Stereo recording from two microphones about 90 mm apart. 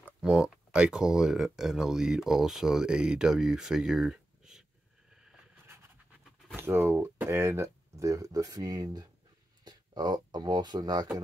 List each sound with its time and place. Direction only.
0.2 s speech: 10° right (ahead or behind)
6.5 s speech: 25° right (ahead or behind); by 11.1 s 50° right (ahead or behind)